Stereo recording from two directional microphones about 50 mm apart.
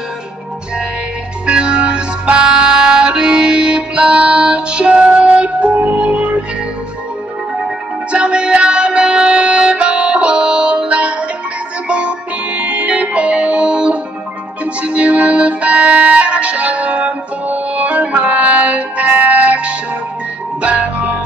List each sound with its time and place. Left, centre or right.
1.4 s music: right
7.6 s music: right